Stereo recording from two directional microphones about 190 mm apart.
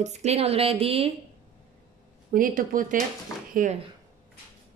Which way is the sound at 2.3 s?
45° right (ahead or behind).